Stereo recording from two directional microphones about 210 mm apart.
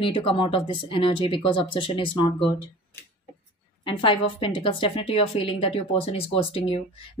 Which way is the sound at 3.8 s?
25° left (ahead or behind).